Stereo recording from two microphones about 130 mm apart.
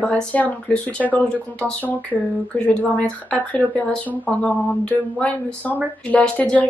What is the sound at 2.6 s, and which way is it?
Speech, 10° left (ahead or behind).